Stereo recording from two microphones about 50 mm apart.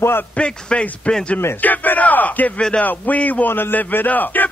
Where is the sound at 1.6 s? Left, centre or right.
Left.